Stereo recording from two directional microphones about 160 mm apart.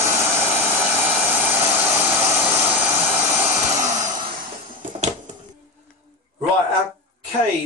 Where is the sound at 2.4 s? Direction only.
40° right (ahead or behind).